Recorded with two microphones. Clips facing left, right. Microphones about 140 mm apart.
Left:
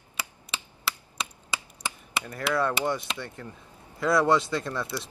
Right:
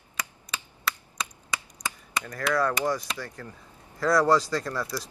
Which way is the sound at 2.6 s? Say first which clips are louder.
Even; 25° left (ahead or behind).